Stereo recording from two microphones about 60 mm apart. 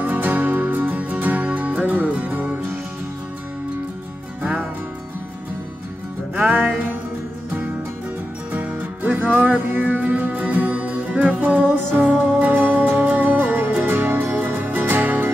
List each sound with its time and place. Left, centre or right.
0.0 s music: right
4.4 s music: centre
6.3 s music: right
8.5 s music: right